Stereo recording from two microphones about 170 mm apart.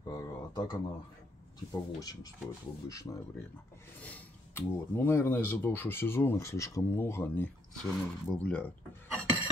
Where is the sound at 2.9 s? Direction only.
20° left (ahead or behind).